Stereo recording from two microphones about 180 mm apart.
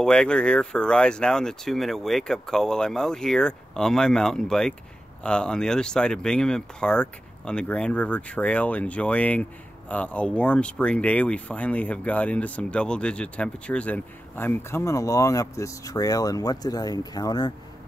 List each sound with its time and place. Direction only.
0.0 s speech: 5° left (ahead or behind); by 17.5 s 20° left (ahead or behind)